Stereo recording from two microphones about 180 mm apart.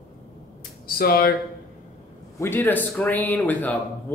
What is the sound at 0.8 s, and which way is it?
Speech, 60° left (ahead or behind).